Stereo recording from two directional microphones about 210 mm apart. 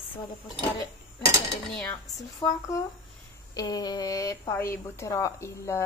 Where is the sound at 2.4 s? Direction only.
20° left (ahead or behind).